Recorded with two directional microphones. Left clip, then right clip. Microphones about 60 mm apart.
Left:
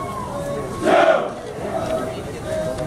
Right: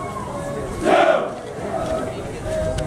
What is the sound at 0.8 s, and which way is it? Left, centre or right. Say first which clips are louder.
Battle cry: left 1 dB; centre.